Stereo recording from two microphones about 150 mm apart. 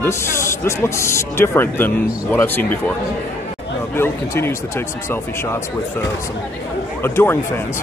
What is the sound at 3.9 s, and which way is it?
Speech, 15° left (ahead or behind).